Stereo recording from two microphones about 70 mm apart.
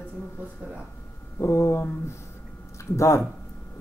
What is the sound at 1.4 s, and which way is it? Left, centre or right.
Speech, left.